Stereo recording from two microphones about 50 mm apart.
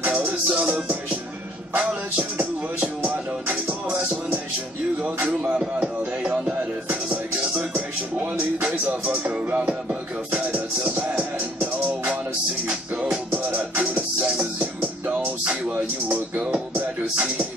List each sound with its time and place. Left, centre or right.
0.1 s music: right
5.4 s music: right